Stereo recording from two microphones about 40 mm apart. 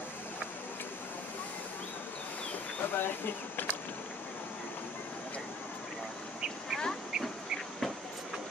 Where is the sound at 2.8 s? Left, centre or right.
Left.